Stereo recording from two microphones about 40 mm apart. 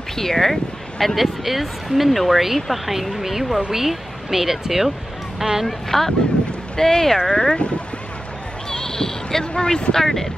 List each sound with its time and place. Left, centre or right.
0.1 s speech: centre
5.7 s speech: centre
8.6 s a sound: centre
9.5 s speech: left
9.9 s speech: centre